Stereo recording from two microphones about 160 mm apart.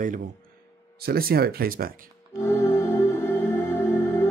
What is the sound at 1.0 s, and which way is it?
Speech, 70° right (ahead or behind).